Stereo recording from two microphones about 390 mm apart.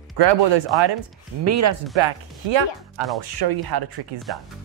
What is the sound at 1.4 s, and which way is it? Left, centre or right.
Speech, right.